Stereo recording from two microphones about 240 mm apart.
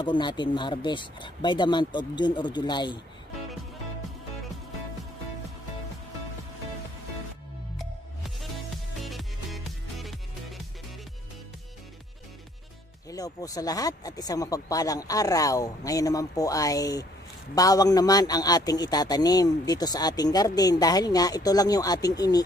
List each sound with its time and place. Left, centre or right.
0.0 s speech: centre
7.8 s music: centre
13.1 s a man's voice: centre